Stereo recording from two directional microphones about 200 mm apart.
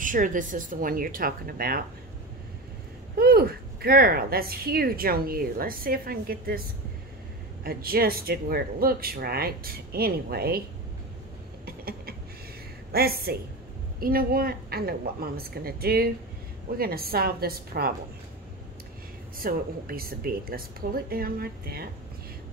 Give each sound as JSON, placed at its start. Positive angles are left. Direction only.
{"t": 0.0, "sound": "a woman's voice", "side_deg": -40}
{"t": 3.2, "sound": "a woman's voice", "side_deg": -50}
{"t": 7.6, "sound": "a woman's voice", "side_deg": -50}
{"t": 11.6, "sound": "a sound", "side_deg": -50}
{"t": 12.9, "sound": "a woman's voice", "side_deg": -50}
{"t": 19.3, "sound": "a woman's voice", "side_deg": -45}